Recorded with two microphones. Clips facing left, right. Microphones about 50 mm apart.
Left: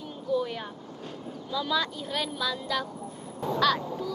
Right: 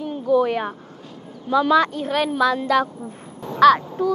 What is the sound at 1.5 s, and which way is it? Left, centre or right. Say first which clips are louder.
A woman's voice: right 12 dB; right.